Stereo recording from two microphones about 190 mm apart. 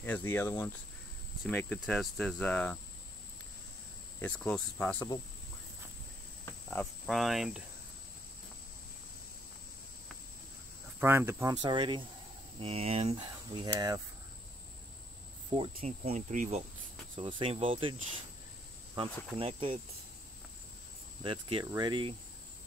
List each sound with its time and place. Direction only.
0.0 s speech: 10° left (ahead or behind)
4.2 s speech: 5° left (ahead or behind)
6.4 s cricket: 10° left (ahead or behind)
7.1 s speech: centre (ahead or behind)
11.0 s speech: 10° right (ahead or behind)
15.5 s speech: 30° right (ahead or behind)
17.2 s speech: 25° right (ahead or behind)
21.2 s speech: 25° right (ahead or behind)